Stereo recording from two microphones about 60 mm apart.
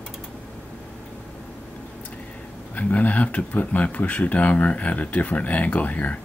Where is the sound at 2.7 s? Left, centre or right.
Left.